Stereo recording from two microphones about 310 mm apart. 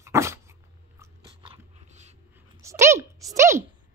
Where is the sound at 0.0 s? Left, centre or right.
Centre.